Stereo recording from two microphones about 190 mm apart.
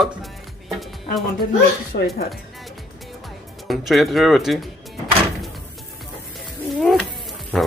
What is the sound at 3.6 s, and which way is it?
Speech, centre (ahead or behind).